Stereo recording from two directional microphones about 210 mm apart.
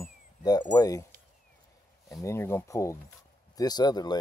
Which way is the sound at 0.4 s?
20° left (ahead or behind).